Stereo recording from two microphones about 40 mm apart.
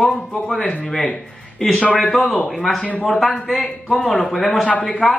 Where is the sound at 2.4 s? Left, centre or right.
Centre.